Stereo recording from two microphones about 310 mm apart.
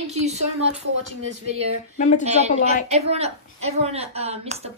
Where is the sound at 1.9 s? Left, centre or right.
Left.